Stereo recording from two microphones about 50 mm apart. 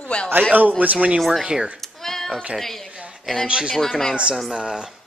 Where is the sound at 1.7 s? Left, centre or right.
Centre.